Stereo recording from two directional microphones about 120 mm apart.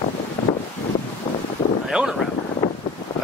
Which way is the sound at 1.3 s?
45° left (ahead or behind).